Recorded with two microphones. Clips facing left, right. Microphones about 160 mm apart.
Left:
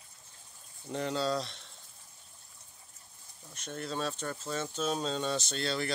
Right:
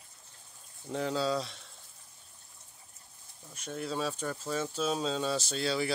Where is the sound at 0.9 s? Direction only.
Centre (ahead or behind).